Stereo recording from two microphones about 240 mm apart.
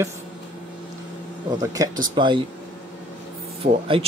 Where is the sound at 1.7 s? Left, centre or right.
Centre.